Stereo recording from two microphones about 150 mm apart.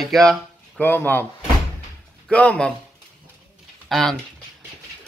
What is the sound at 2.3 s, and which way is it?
Speech, 10° left (ahead or behind).